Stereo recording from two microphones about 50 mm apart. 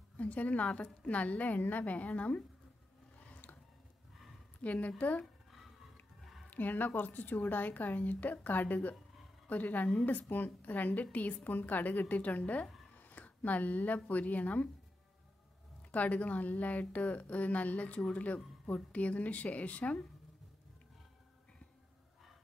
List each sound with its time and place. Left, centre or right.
0.2 s a woman's voice: left
3.3 s a sound: left
4.6 s a woman's voice: left
6.5 s a woman's voice: left
15.9 s a woman's voice: left